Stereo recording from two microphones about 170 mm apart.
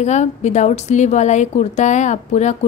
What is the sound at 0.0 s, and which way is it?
A woman's voice, 40° left (ahead or behind).